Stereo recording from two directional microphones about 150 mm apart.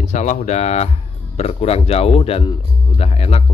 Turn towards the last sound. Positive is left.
turn(degrees=40)  # may be behind; listen again after turning